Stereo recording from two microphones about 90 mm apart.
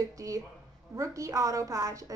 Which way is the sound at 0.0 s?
40° right (ahead or behind).